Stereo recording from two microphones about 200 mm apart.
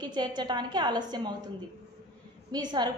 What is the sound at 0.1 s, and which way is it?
A woman's voice, 20° right (ahead or behind).